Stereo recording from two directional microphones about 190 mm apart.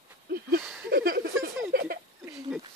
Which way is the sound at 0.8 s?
50° right (ahead or behind).